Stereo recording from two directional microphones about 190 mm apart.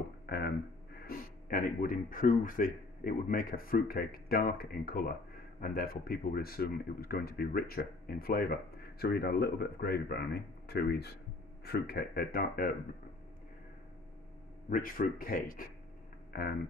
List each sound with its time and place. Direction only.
0.3 s speech: 55° left (ahead or behind)
14.7 s speech: 45° left (ahead or behind)